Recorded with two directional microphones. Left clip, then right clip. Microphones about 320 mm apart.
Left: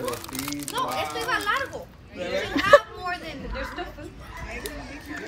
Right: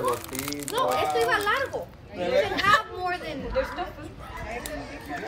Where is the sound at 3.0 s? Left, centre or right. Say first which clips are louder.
Right 2 dB; right.